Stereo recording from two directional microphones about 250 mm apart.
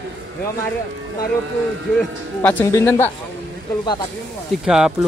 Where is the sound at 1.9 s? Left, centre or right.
Centre.